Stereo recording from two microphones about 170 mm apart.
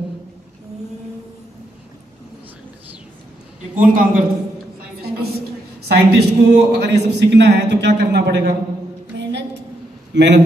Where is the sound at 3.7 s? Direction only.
50° right (ahead or behind).